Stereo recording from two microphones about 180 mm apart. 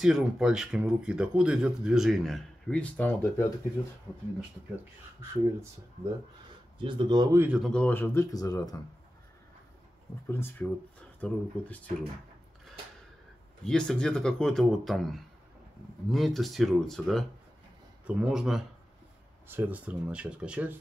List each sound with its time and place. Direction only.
0.0 s speech: centre (ahead or behind); by 3.5 s 15° left (ahead or behind)
5.3 s speech: 15° right (ahead or behind)
7.3 s speech: 5° right (ahead or behind)
7.7 s speech: 10° left (ahead or behind)
10.2 s speech: 10° left (ahead or behind)
13.7 s speech: 5° left (ahead or behind)